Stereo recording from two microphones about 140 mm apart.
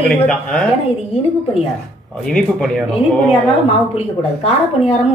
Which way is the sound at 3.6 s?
45° left (ahead or behind).